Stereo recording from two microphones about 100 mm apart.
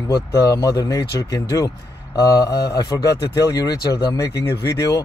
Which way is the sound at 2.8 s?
35° left (ahead or behind).